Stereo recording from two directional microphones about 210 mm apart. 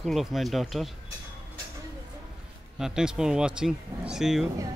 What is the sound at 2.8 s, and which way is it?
Speech, 5° right (ahead or behind).